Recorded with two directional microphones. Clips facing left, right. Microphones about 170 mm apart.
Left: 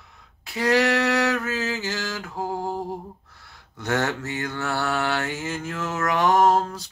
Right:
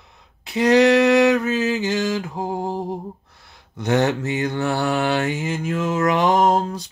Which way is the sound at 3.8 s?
20° right (ahead or behind).